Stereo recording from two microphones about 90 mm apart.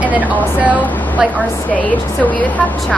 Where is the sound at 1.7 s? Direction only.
15° left (ahead or behind).